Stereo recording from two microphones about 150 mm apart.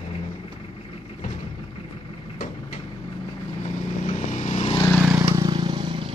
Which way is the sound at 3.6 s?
45° left (ahead or behind).